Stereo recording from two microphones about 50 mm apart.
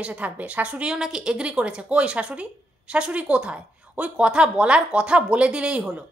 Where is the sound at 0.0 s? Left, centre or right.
Right.